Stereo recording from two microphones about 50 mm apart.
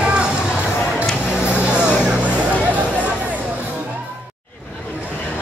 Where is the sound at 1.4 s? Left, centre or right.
Right.